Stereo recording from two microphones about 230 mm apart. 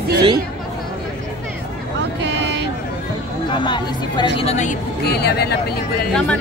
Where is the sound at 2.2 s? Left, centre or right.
Right.